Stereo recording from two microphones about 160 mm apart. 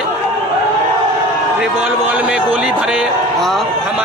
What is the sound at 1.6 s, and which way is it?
A man's voice, 10° right (ahead or behind).